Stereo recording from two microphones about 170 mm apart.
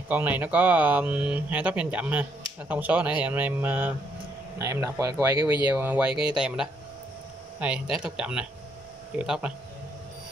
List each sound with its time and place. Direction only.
0.1 s speech: 10° right (ahead or behind)